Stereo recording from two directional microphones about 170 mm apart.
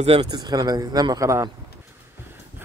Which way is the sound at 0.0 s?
35° right (ahead or behind).